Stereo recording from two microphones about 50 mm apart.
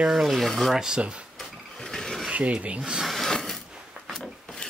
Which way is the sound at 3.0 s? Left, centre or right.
Centre.